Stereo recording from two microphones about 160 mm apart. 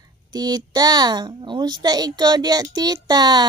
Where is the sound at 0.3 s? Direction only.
25° right (ahead or behind).